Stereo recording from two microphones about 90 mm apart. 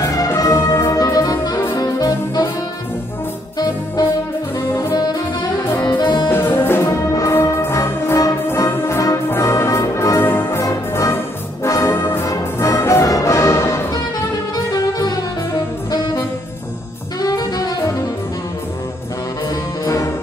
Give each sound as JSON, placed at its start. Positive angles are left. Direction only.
{"t": 0.0, "sound": "music", "side_deg": 40}
{"t": 0.4, "sound": "brass instrument", "side_deg": 35}
{"t": 1.8, "sound": "saxophone", "side_deg": 45}
{"t": 3.5, "sound": "music", "side_deg": 45}
{"t": 4.6, "sound": "brass instrument", "side_deg": 25}
{"t": 5.9, "sound": "music", "side_deg": 60}
{"t": 6.2, "sound": "music", "side_deg": 25}
{"t": 10.6, "sound": "brass instrument", "side_deg": 30}
{"t": 12.3, "sound": "music", "side_deg": 35}
{"t": 14.7, "sound": "saxophone", "side_deg": 45}
{"t": 17.2, "sound": "saxophone", "side_deg": 45}
{"t": 19.5, "sound": "music", "side_deg": 40}